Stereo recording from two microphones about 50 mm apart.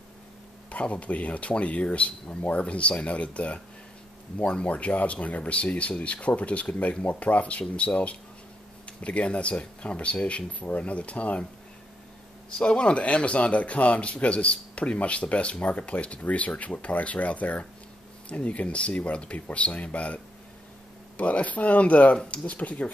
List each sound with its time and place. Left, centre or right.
0.7 s speech: left
12.4 s speech: centre
21.2 s speech: left